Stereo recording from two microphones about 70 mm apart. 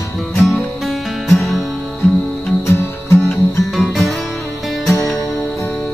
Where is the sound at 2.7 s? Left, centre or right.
Left.